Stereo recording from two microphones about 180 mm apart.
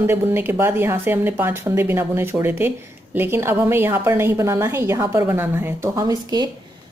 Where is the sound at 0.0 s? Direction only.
10° right (ahead or behind).